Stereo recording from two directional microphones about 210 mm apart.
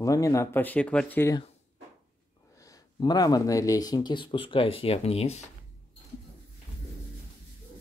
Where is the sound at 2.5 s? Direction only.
15° left (ahead or behind).